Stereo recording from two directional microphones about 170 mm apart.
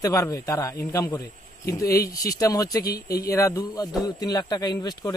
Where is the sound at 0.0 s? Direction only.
20° left (ahead or behind).